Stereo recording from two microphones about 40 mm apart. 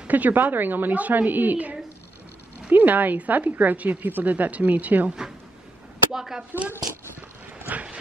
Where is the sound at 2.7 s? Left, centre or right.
Right.